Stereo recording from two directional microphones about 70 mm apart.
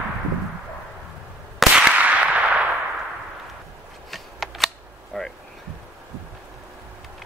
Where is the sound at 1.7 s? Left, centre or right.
Centre.